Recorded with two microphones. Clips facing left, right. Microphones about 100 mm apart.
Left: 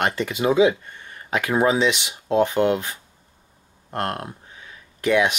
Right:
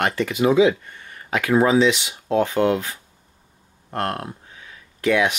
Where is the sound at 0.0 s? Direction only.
20° left (ahead or behind).